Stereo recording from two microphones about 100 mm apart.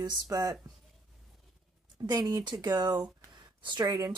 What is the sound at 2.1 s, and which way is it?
A woman's voice, 40° right (ahead or behind).